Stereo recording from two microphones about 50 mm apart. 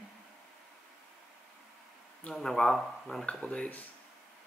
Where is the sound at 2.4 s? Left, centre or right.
Centre.